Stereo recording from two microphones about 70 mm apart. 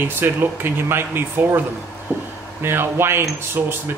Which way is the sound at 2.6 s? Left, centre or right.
Right.